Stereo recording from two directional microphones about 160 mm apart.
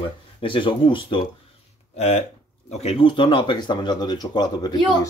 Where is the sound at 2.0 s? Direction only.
45° left (ahead or behind); by 4.7 s 25° left (ahead or behind).